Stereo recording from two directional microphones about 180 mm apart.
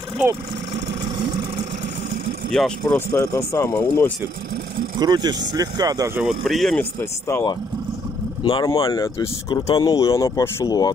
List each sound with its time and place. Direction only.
2.5 s speech: 5° left (ahead or behind)
3.2 s speech: 15° left (ahead or behind)
4.9 s speech: 20° right (ahead or behind)
6.2 s speech: centre (ahead or behind)
8.5 s speech: 25° left (ahead or behind)